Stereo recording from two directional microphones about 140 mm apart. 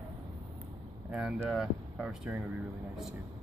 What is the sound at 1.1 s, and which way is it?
Speech, 5° right (ahead or behind).